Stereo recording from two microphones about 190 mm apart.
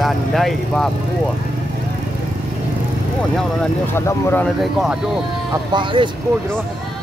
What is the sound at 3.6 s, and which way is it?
Speech, 15° left (ahead or behind).